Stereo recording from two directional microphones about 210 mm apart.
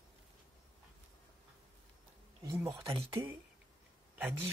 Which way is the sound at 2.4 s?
15° right (ahead or behind).